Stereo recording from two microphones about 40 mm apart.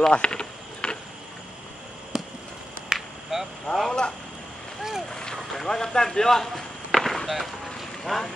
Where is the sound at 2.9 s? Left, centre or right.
Centre.